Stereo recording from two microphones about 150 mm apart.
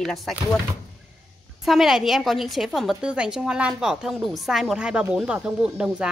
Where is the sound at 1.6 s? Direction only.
Centre (ahead or behind).